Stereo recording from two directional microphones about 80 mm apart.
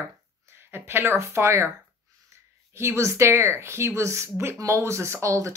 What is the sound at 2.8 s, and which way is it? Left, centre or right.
Speech, right.